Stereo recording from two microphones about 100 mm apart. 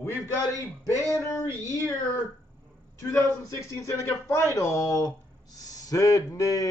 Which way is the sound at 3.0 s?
25° left (ahead or behind).